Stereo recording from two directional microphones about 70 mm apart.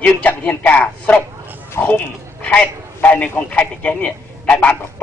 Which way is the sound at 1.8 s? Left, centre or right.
Left.